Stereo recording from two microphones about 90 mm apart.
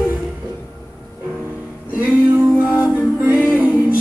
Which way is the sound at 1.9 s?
15° right (ahead or behind).